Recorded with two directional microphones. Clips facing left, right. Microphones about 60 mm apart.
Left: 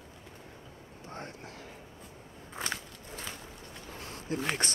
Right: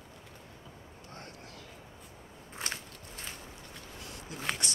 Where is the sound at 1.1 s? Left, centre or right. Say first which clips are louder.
Left 5 dB; left.